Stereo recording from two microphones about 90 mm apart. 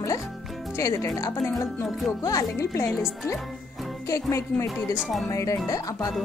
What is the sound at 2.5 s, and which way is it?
Speech, 35° left (ahead or behind).